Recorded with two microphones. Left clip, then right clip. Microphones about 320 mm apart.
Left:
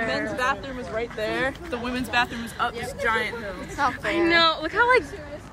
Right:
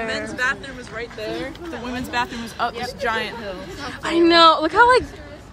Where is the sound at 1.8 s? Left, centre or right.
Centre.